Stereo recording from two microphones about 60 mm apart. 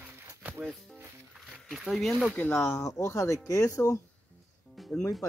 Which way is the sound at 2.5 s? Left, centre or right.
Left.